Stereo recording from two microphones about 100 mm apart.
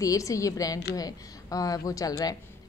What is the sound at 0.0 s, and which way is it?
A woman's voice, 35° left (ahead or behind).